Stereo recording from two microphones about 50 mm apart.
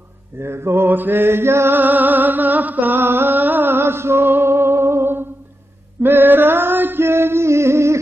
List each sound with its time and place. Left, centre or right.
0.4 s mantra: right
0.8 s mantra: right
1.7 s a sound: right